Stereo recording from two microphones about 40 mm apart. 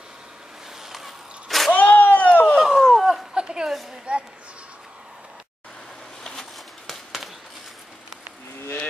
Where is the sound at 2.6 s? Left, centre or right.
Centre.